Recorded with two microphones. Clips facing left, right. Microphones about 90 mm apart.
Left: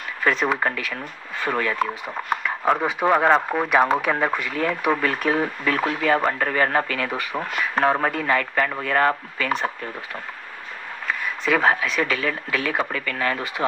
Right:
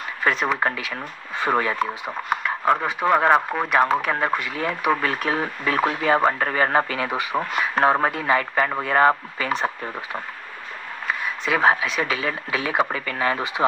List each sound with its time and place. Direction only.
0.2 s a sound: 10° right (ahead or behind)
0.6 s speech: 10° right (ahead or behind)
2.4 s speech: centre (ahead or behind); by 9.7 s 20° right (ahead or behind)
11.1 s speech: 10° right (ahead or behind)